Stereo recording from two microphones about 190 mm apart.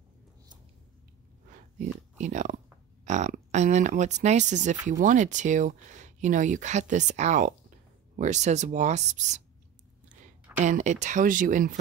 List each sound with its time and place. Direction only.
1.5 s a sound: 40° right (ahead or behind)
3.1 s speech: 35° right (ahead or behind)
10.6 s speech: 40° right (ahead or behind)